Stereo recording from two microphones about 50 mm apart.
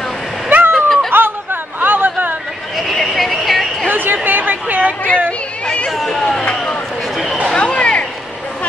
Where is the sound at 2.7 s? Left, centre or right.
Centre.